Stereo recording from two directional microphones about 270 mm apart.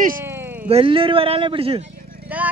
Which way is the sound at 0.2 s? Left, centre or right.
Centre.